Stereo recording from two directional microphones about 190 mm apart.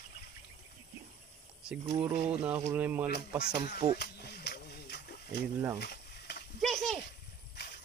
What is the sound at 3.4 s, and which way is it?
Music, 60° left (ahead or behind).